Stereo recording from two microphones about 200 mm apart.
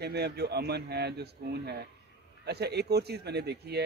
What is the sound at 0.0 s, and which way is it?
Speech, 55° right (ahead or behind).